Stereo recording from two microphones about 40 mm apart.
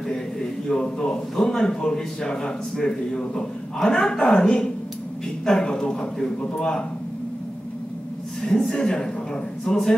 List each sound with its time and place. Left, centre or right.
0.1 s a man's voice: centre
8.4 s a man's voice: left